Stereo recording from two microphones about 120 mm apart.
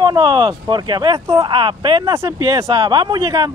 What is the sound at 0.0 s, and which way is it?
Speech, 40° right (ahead or behind).